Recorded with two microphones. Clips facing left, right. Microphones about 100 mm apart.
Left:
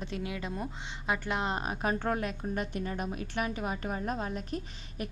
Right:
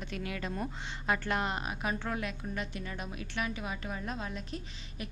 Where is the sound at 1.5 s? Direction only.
35° left (ahead or behind).